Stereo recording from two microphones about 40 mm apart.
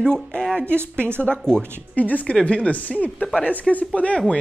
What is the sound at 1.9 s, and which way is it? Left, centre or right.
Speech, left.